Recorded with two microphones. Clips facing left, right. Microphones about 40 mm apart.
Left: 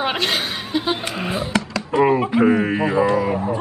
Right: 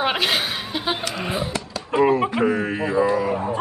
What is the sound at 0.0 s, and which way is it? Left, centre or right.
Speech, centre.